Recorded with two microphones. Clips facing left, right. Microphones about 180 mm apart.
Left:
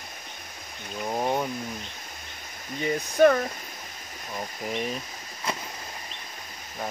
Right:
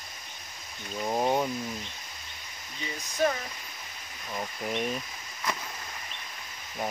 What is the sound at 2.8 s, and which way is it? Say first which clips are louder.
Speech: left 9 dB; 60° left (ahead or behind).